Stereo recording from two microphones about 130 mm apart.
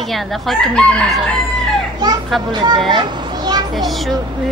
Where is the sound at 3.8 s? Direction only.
Centre (ahead or behind).